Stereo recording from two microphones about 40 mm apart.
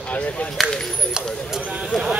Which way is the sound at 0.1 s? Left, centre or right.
Left.